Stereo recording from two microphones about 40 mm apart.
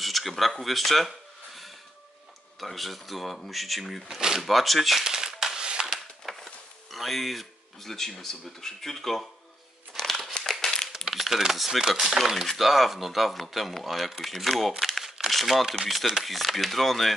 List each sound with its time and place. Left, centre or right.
0.0 s a sound: centre
2.6 s speech: centre
5.0 s a sound: centre
6.2 s speech: centre
9.9 s crumpling: centre
11.1 s speech: centre
14.8 s crumpling: centre
15.9 s speech: centre